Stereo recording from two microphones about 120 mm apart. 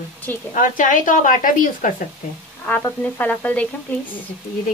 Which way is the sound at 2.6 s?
15° left (ahead or behind).